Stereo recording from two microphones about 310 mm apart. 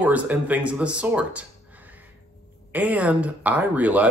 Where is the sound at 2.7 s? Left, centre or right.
Centre.